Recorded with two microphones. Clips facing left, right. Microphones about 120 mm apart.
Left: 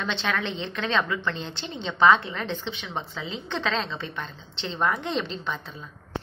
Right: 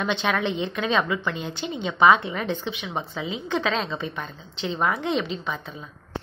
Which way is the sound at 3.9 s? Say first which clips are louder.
Right 4 dB; 20° right (ahead or behind).